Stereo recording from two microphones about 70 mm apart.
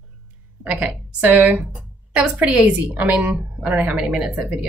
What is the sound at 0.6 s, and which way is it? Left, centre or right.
A woman's voice, centre.